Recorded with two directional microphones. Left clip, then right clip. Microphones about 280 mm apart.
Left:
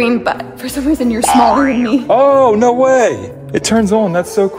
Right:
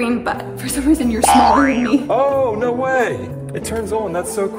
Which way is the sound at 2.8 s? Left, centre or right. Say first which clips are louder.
Left 5 dB; centre.